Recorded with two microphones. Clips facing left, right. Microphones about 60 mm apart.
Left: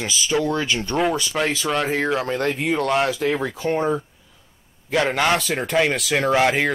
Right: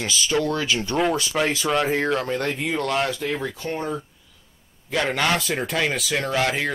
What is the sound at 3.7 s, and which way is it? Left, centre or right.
Speech, left.